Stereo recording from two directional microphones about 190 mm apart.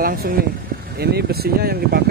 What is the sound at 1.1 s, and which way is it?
Speech, 55° right (ahead or behind).